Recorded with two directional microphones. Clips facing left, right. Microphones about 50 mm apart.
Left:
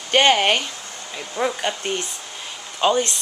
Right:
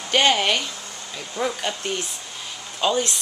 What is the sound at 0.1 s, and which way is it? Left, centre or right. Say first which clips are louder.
Speech: left 3 dB; left.